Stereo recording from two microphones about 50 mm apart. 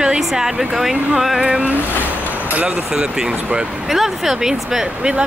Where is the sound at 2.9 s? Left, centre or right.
Centre.